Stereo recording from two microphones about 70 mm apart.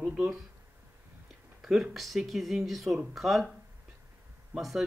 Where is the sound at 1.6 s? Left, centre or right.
Centre.